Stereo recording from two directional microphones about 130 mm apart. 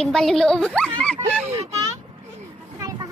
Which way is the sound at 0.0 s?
5° left (ahead or behind).